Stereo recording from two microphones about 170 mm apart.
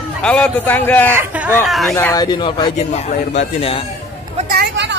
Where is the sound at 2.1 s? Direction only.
25° left (ahead or behind).